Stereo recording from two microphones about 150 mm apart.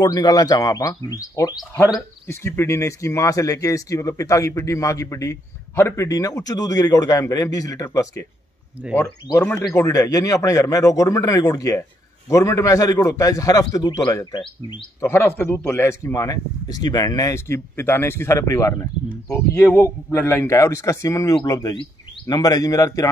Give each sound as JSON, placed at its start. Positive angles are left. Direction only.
{"t": 0.0, "sound": "a man's voice", "side_deg": 25}
{"t": 9.3, "sound": "a man's voice", "side_deg": 15}
{"t": 15.0, "sound": "a man's voice", "side_deg": 20}